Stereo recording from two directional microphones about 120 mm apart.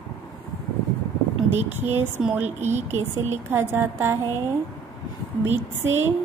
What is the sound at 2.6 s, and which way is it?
Speech, 70° right (ahead or behind).